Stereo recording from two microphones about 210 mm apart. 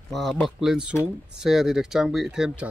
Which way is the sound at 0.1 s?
Centre (ahead or behind).